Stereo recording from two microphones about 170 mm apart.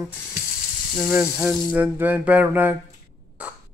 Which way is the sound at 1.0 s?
5° right (ahead or behind).